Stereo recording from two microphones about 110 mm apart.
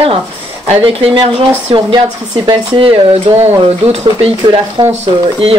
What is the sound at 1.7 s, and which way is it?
Speech, 55° right (ahead or behind).